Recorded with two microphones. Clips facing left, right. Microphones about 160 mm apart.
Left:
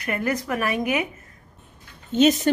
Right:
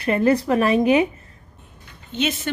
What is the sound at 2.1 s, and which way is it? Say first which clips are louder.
Speech: left 7 dB; 40° left (ahead or behind).